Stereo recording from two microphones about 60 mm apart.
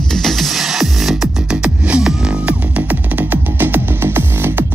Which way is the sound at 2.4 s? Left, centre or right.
Right.